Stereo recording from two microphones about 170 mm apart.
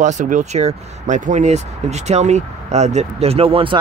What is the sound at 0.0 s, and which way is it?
A man's voice, 45° right (ahead or behind).